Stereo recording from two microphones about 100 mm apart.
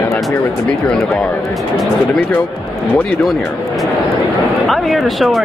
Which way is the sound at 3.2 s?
Centre (ahead or behind).